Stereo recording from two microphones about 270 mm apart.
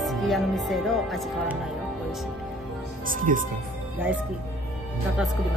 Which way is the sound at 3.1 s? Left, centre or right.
Right.